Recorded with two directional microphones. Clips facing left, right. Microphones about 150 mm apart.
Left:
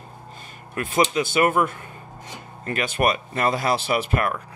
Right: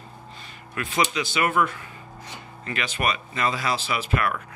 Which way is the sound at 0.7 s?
45° left (ahead or behind).